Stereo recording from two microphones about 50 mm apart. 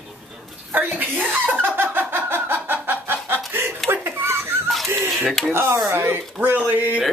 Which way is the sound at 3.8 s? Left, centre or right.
Right.